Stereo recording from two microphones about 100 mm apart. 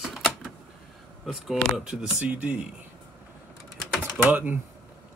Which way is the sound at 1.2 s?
5° right (ahead or behind).